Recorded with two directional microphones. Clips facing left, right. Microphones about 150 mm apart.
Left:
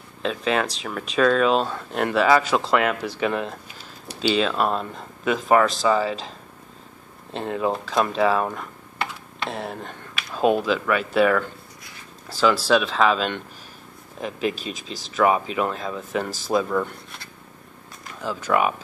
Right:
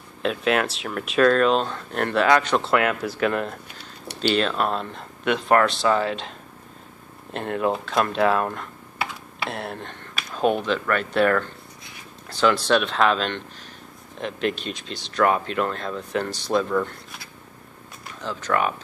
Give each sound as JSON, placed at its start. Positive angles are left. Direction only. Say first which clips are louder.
{"t": 0.2, "sound": "speech", "louder": "right 1 dB", "side_deg": -5}
{"t": 7.3, "sound": "speech", "louder": "even", "side_deg": 0}
{"t": 10.2, "sound": "a sound", "louder": "right 1 dB", "side_deg": -40}
{"t": 10.6, "sound": "speech", "louder": "left 1 dB", "side_deg": 5}
{"t": 18.2, "sound": "speech", "louder": "left 2 dB", "side_deg": 10}